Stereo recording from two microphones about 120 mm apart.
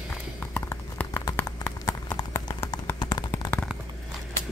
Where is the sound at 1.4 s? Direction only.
30° left (ahead or behind).